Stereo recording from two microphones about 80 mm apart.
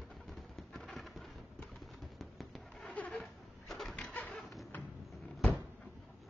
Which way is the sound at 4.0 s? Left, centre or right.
Centre.